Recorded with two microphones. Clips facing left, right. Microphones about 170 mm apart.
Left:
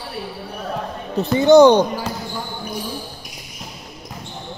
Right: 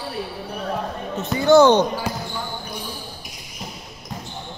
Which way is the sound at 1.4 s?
15° left (ahead or behind).